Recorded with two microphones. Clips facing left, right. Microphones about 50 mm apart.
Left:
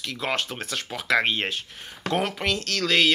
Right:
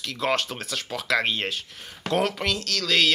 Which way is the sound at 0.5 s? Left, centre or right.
Left.